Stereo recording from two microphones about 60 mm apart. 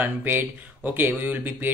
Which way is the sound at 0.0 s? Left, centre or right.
Right.